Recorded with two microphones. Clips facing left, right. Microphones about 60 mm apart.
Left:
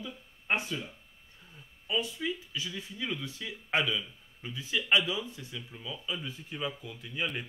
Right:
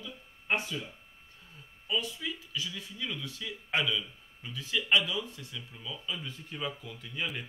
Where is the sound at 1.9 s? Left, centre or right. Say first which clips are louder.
Left 2 dB; left.